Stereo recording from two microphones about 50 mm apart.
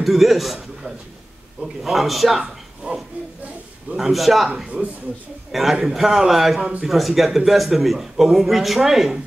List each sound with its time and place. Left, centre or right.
0.0 s a man's voice: centre
1.6 s a man's voice: centre
2.8 s a man's voice: right
4.1 s a man's voice: centre
5.5 s a man's voice: centre
6.6 s a man's voice: right
6.9 s a man's voice: centre